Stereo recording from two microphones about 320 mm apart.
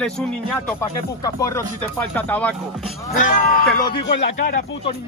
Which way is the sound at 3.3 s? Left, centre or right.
Left.